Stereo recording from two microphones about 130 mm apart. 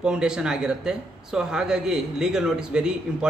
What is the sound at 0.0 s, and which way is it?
Speech, 5° right (ahead or behind).